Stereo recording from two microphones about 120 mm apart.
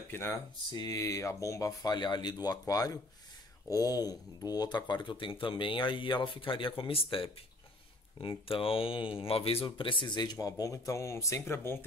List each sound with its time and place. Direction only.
0.1 s speech: 20° left (ahead or behind)
0.7 s speech: 35° left (ahead or behind)